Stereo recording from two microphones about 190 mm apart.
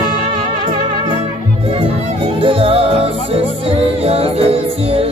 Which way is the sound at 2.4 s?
30° right (ahead or behind).